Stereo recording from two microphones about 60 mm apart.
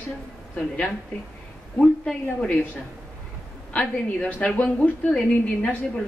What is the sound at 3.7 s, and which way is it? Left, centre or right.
Speech, left.